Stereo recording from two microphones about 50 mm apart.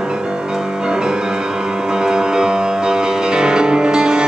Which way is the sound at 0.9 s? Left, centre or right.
Centre.